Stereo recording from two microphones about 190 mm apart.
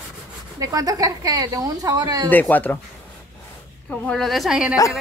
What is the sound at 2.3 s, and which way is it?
Speech, 10° left (ahead or behind).